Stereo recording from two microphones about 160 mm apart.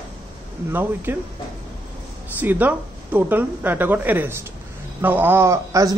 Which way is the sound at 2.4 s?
10° right (ahead or behind).